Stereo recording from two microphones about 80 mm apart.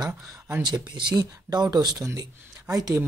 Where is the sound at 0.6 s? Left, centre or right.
Right.